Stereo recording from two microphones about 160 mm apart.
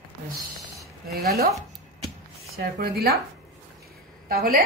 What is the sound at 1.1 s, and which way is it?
Speech, 75° right (ahead or behind).